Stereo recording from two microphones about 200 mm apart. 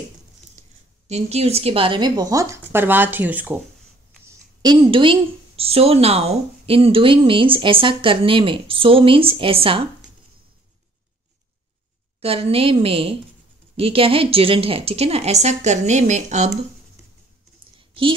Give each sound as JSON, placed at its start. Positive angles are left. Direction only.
{"t": 0.6, "sound": "speech", "side_deg": -35}
{"t": 4.6, "sound": "a woman's voice", "side_deg": -25}
{"t": 12.2, "sound": "a woman's voice", "side_deg": -30}
{"t": 17.7, "sound": "a sound", "side_deg": -25}